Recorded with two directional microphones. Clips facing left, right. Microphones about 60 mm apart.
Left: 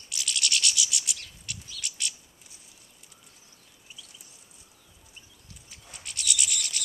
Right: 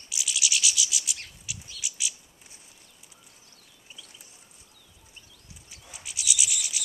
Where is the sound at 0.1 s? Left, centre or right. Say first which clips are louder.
Even; centre.